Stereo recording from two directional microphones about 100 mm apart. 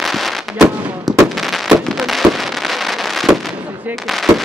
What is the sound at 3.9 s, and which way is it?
Speech, centre (ahead or behind).